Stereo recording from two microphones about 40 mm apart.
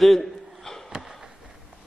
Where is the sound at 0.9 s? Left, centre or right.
Centre.